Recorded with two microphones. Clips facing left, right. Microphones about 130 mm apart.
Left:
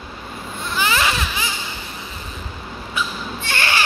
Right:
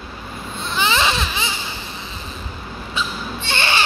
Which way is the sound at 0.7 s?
25° right (ahead or behind).